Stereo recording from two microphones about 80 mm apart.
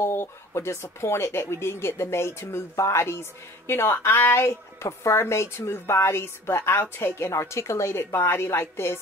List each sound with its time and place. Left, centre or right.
0.0 s speech: left